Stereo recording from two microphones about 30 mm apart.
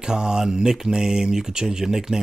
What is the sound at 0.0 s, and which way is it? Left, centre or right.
Speech, right.